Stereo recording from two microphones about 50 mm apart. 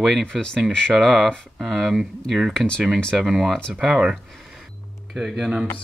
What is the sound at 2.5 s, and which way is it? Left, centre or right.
Speech, centre.